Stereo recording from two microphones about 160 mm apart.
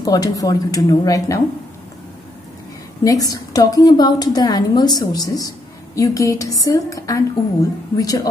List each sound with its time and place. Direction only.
0.0 s a woman's voice: 25° left (ahead or behind)
3.0 s a woman's voice: 20° left (ahead or behind)